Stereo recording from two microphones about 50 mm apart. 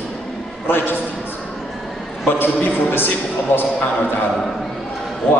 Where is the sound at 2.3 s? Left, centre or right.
Left.